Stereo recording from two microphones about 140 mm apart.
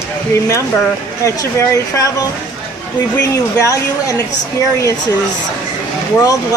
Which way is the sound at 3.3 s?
20° left (ahead or behind).